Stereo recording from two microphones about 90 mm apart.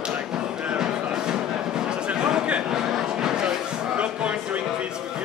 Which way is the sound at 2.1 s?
10° right (ahead or behind).